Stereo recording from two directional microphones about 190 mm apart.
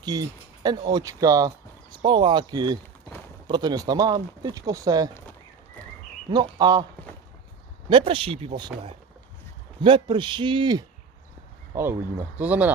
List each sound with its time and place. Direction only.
0.0 s speech: 20° right (ahead or behind)
6.3 s speech: 20° right (ahead or behind)
7.9 s speech: 30° right (ahead or behind); by 12.7 s 10° right (ahead or behind)